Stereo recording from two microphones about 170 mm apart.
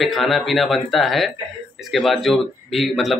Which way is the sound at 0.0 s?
Centre (ahead or behind).